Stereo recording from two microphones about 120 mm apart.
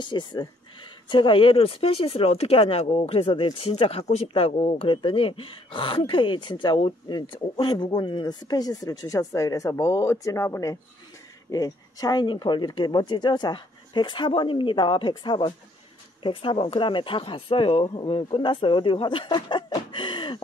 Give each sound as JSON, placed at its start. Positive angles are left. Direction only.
{"t": 0.0, "sound": "speech", "side_deg": 40}